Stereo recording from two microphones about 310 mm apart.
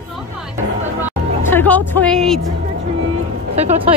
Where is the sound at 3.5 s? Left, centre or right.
Right.